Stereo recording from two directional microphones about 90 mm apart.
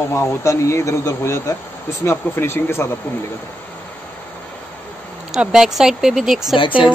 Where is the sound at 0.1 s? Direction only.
30° left (ahead or behind).